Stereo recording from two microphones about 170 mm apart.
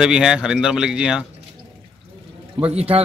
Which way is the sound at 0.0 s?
5° right (ahead or behind).